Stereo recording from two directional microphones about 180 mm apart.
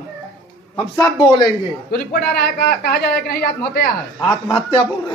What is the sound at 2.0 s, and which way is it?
Speech, 65° left (ahead or behind).